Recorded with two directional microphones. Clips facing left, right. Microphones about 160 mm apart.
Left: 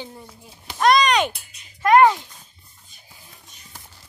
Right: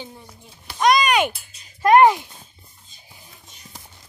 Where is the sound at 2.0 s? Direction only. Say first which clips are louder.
Right 1 dB; 15° right (ahead or behind).